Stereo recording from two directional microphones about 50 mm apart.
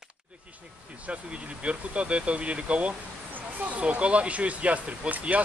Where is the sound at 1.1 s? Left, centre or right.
Right.